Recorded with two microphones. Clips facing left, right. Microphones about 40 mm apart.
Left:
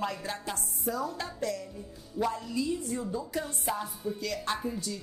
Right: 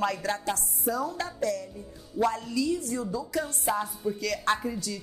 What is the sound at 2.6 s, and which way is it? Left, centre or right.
Speech, right.